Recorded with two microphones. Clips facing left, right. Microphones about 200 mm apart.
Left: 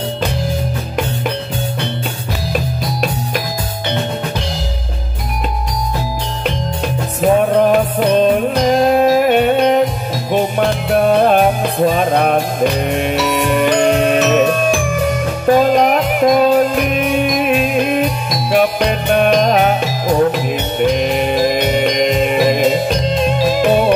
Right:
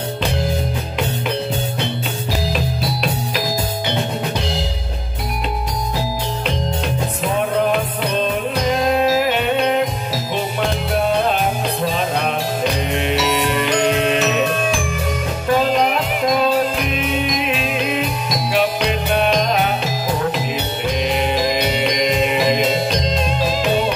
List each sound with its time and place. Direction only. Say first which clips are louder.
2.5 s music: left 2 dB; 50° left (ahead or behind)
7.2 s music: left 9 dB; 50° left (ahead or behind)
15.6 s music: left 5 dB; 45° left (ahead or behind)